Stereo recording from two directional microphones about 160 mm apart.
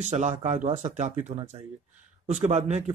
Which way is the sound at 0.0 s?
50° right (ahead or behind).